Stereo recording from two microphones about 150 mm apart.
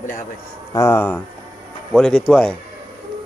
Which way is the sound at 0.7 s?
20° left (ahead or behind).